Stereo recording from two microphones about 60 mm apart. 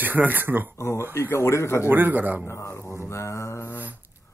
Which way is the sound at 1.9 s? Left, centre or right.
Right.